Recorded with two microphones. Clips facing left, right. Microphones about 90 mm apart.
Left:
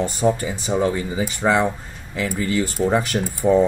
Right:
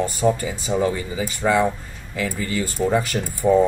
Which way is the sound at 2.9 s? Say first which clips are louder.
Left 1 dB; 20° left (ahead or behind).